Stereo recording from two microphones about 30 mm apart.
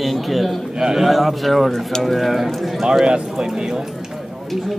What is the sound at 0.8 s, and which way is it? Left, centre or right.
Speech, right.